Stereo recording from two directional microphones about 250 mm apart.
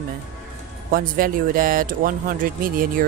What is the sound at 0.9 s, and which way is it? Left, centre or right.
Speech, right.